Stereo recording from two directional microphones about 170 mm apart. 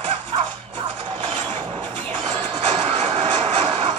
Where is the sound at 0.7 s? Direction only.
30° right (ahead or behind).